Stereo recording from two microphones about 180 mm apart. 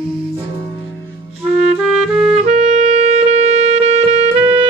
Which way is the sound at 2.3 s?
40° right (ahead or behind).